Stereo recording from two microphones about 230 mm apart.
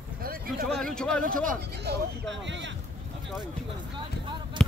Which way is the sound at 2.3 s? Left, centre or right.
Right.